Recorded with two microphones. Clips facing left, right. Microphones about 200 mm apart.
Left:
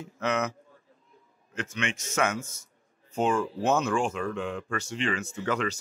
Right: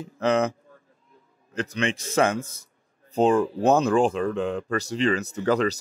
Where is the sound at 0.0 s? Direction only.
35° right (ahead or behind).